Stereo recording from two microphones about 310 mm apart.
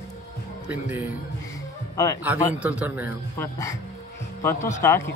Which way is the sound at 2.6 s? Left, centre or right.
Centre.